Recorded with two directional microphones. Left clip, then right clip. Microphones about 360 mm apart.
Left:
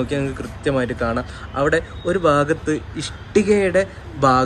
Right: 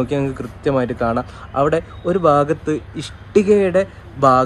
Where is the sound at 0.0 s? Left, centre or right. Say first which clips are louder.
Right 3 dB; centre.